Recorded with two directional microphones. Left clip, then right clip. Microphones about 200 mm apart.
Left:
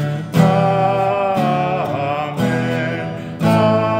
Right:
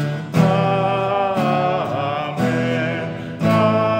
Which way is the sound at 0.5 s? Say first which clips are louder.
Left 3 dB; centre (ahead or behind).